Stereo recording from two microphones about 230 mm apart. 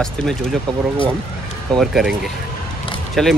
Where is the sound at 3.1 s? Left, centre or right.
Centre.